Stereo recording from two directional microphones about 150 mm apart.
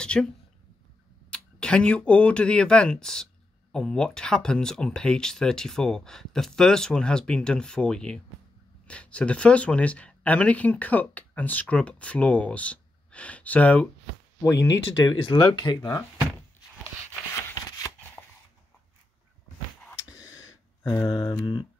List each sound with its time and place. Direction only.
0.0 s a woman's voice: 5° left (ahead or behind)
1.3 s speech: 5° left (ahead or behind)
14.4 s speech: 20° left (ahead or behind)
15.2 s speech: 35° left (ahead or behind)
17.5 s shuffling cards: 25° left (ahead or behind)
20.0 s a sound: 25° left (ahead or behind)
21.1 s speech: 25° left (ahead or behind)